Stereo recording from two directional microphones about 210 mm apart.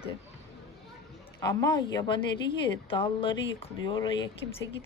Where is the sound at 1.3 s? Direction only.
20° left (ahead or behind).